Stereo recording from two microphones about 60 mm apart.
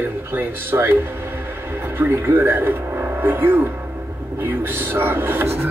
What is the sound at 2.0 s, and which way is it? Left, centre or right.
Speech, right.